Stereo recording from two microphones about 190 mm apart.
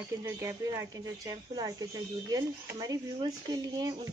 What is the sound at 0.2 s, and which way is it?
Speech, 15° right (ahead or behind).